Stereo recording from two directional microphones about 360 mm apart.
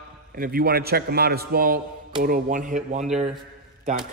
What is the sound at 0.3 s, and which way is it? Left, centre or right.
A man's voice, right.